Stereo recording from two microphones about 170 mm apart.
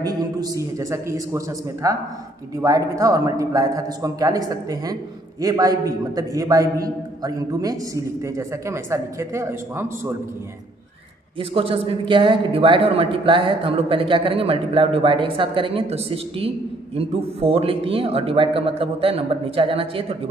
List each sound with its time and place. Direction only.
0.0 s a man's voice: 20° right (ahead or behind)
11.3 s a woman's voice: 35° right (ahead or behind)